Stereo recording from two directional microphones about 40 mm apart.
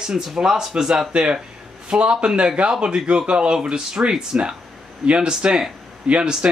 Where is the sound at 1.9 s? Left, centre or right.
Right.